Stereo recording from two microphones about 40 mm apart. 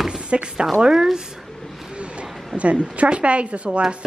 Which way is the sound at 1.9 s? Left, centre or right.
Right.